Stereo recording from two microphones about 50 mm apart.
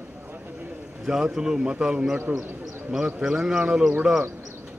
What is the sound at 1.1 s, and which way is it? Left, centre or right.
A man's voice, centre.